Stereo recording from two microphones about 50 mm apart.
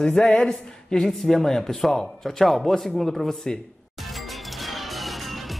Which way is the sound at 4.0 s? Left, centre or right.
Centre.